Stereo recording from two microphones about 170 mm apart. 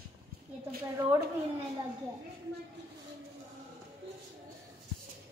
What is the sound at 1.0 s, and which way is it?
Speech, 15° right (ahead or behind).